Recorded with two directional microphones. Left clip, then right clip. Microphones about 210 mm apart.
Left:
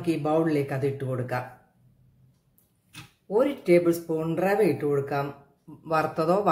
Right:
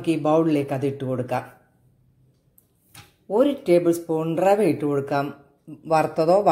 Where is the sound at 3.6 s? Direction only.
20° right (ahead or behind).